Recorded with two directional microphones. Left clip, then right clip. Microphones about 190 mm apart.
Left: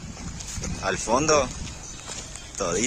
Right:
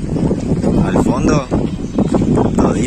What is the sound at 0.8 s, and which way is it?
Speech, centre (ahead or behind).